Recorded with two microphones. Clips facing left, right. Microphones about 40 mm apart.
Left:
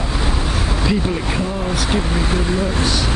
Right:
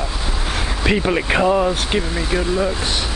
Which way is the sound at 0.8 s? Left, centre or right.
Right.